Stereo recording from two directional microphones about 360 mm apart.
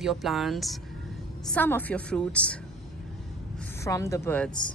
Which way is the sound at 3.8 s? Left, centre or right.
Centre.